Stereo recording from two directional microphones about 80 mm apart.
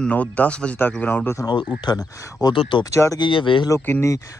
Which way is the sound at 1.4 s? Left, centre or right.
Left.